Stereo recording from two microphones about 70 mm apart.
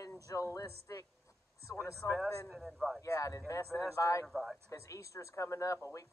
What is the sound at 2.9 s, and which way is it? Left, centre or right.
Speech, left.